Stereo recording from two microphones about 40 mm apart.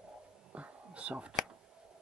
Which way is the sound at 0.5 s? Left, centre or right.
Right.